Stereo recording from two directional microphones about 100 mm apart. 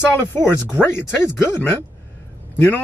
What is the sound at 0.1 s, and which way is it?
Speech, 20° left (ahead or behind).